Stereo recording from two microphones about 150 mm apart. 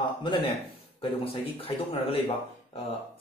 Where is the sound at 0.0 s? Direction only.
30° left (ahead or behind).